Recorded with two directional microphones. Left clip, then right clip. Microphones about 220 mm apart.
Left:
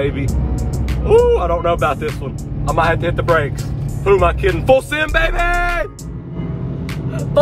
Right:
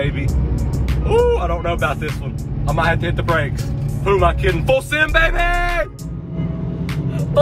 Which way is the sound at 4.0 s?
45° left (ahead or behind).